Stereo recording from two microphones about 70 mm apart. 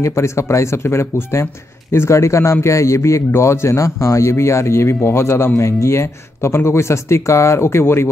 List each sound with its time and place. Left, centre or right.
0.0 s speech: left